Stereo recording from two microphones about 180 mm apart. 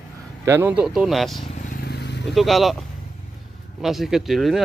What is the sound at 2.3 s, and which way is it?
Speech, centre (ahead or behind).